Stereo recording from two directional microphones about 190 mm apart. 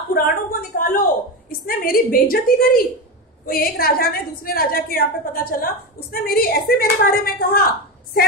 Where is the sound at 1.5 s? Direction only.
50° left (ahead or behind).